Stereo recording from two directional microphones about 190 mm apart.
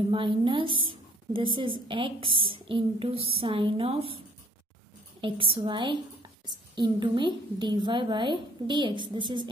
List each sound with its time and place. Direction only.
0.1 s a woman's voice: 25° right (ahead or behind)
5.2 s a woman's voice: 25° right (ahead or behind)